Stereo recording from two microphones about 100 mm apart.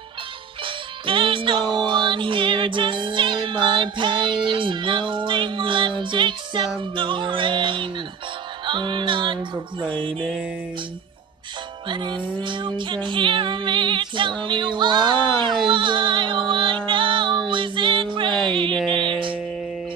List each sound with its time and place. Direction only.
0.7 s music: 60° right (ahead or behind)
11.9 s music: 50° right (ahead or behind)